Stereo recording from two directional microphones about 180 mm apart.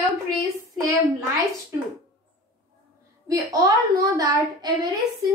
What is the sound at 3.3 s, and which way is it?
A woman's voice, 20° right (ahead or behind).